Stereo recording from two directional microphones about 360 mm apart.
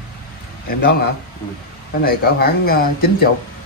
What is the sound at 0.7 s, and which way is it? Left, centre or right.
Speech, left.